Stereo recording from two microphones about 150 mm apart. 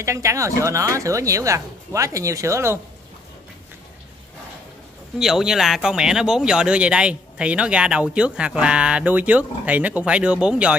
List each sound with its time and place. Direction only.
0.0 s speech: 20° right (ahead or behind)
5.2 s speech: 5° right (ahead or behind)